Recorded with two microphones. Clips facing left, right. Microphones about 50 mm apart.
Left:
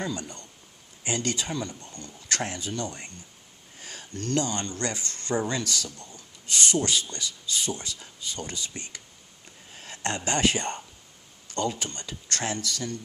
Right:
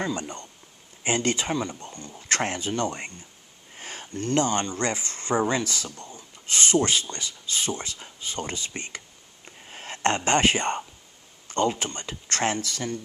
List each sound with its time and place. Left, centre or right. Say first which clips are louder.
0.0 s speech: right 3 dB; right
1.9 s speech: right 2 dB; centre
2.1 s speech: right 4 dB; right
3.7 s a sound: right 5 dB; right
4.1 s speech: right 3 dB; centre
4.7 s speech: right 4 dB; right